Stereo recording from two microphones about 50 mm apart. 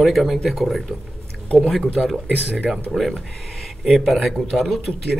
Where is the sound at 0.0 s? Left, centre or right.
Centre.